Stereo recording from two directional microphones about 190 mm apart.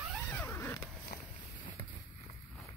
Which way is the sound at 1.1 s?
45° left (ahead or behind).